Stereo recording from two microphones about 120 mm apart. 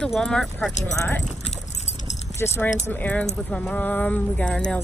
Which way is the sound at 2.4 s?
20° left (ahead or behind).